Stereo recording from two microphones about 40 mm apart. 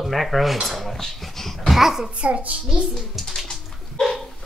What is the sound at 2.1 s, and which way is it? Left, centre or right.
Speech, right.